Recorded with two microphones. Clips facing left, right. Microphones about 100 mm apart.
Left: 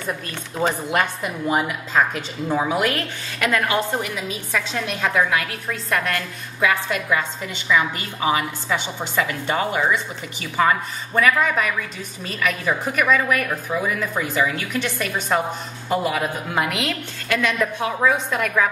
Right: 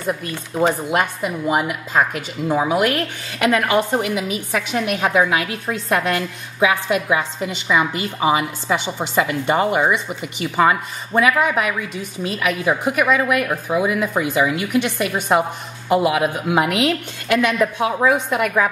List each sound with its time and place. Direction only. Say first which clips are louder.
0.0 s a woman's voice: right 4 dB; 10° right (ahead or behind)